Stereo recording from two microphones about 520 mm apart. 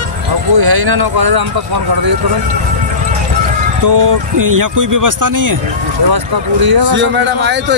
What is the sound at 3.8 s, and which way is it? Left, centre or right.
Speech, right.